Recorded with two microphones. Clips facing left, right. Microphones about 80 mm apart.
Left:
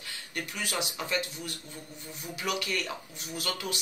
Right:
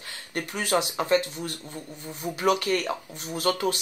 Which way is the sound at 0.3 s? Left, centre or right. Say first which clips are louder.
Right 9 dB; right.